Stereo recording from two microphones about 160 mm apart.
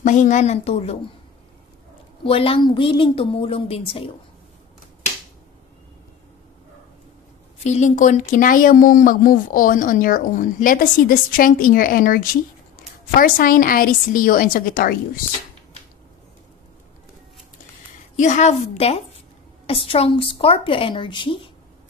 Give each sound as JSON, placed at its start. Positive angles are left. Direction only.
{"t": 0.0, "sound": "a woman's voice", "side_deg": 50}
{"t": 2.2, "sound": "a woman's voice", "side_deg": 35}
{"t": 7.6, "sound": "speech", "side_deg": 45}
{"t": 18.1, "sound": "a woman's voice", "side_deg": 50}